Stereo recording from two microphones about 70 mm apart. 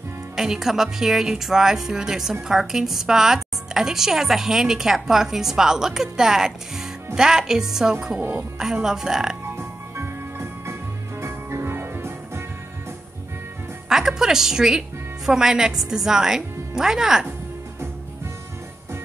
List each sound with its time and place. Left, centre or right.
0.4 s a woman's voice: centre
8.2 s a woman's voice: right
8.7 s a woman's voice: centre
9.6 s music: right
13.8 s a woman's voice: centre